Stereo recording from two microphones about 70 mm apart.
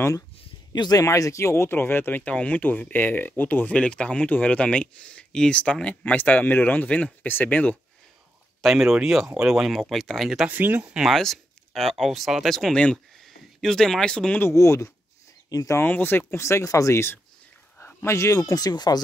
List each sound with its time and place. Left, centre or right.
0.7 s speech: left
1.0 s speech: left
8.5 s speech: centre
10.5 s speech: right
11.1 s speech: centre
12.7 s speech: centre
14.5 s speech: left
15.8 s speech: left
17.7 s a sound: left
18.1 s speech: left
18.4 s speech: left